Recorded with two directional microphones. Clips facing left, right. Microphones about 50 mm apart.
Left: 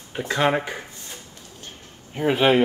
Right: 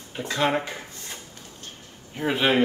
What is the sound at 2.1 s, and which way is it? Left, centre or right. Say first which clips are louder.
Speech: left 4 dB; centre.